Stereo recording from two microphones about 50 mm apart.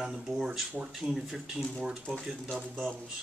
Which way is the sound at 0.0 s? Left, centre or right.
Centre.